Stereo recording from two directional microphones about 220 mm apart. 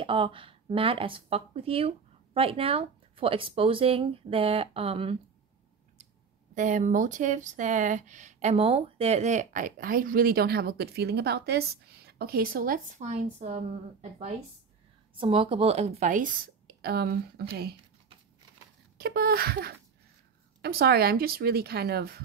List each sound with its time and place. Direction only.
0.0 s speech: 25° right (ahead or behind)
6.5 s speech: 35° right (ahead or behind)
15.1 s speech: 25° right (ahead or behind); by 17.7 s 45° right (ahead or behind)
18.9 s speech: 45° right (ahead or behind)